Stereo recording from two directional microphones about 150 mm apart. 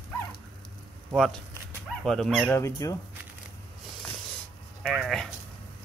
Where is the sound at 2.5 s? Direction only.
20° left (ahead or behind).